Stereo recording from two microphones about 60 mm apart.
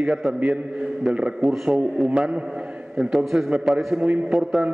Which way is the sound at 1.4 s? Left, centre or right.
Centre.